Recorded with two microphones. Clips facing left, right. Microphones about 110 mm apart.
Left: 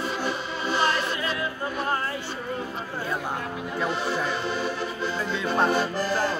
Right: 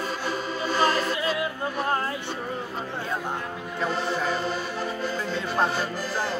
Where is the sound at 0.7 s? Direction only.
40° right (ahead or behind).